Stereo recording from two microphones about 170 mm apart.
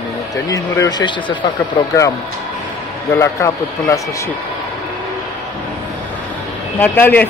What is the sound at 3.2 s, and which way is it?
Speech, 20° left (ahead or behind).